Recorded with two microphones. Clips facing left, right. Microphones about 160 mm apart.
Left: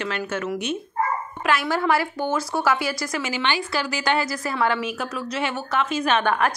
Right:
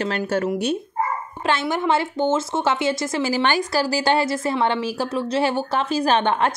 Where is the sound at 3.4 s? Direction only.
45° right (ahead or behind); by 6.5 s 25° right (ahead or behind).